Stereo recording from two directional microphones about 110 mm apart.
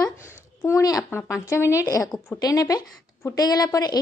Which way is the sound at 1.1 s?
20° left (ahead or behind).